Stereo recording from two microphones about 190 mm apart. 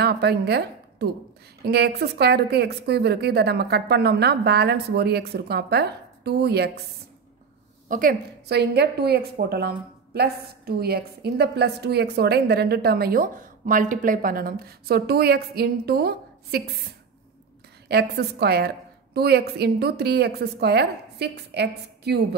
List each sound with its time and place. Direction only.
0.0 s a woman's voice: 60° right (ahead or behind)
7.9 s a woman's voice: 50° right (ahead or behind)
17.8 s a woman's voice: 60° right (ahead or behind)